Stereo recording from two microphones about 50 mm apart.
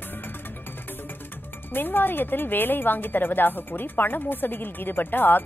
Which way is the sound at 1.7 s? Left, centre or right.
Left.